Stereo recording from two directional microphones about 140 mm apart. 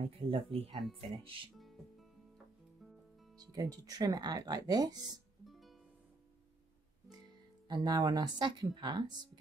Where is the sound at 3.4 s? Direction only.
25° right (ahead or behind).